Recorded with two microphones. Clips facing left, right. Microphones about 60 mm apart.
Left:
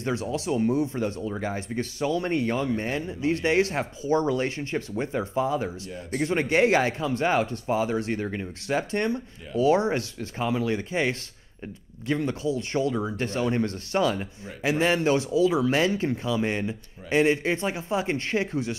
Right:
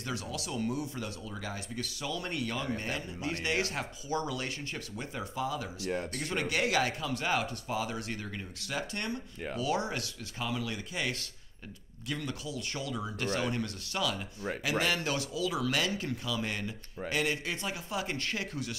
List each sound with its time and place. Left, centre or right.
0.0 s speech: left